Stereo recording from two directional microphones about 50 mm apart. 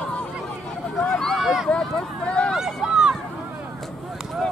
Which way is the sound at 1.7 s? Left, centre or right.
Left.